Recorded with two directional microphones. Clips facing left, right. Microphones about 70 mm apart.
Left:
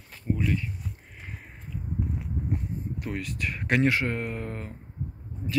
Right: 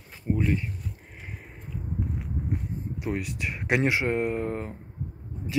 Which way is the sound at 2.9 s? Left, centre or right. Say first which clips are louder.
Right 6 dB; centre.